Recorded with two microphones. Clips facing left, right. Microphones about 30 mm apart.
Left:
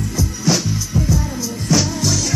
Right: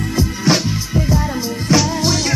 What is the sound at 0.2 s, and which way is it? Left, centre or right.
Music, right.